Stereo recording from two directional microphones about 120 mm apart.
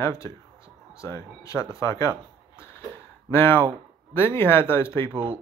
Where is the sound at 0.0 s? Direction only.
25° left (ahead or behind).